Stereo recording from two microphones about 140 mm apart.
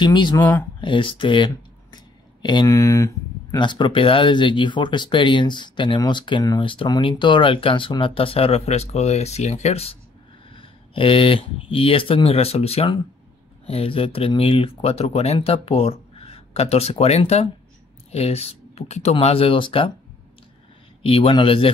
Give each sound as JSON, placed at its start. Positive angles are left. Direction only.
{"t": 0.0, "sound": "speech", "side_deg": 35}
{"t": 2.7, "sound": "speech", "side_deg": 20}
{"t": 3.5, "sound": "speech", "side_deg": 35}
{"t": 11.0, "sound": "speech", "side_deg": 40}
{"t": 21.0, "sound": "speech", "side_deg": 40}